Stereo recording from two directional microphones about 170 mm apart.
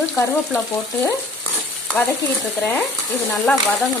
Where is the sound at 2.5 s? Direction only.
10° left (ahead or behind).